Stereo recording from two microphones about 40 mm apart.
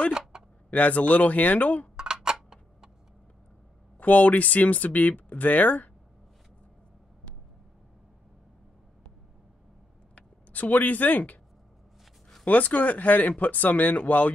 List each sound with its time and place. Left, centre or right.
0.3 s a sound: centre
0.7 s speech: left
2.0 s a sound: centre
4.0 s speech: left
10.1 s speech: left
12.4 s speech: left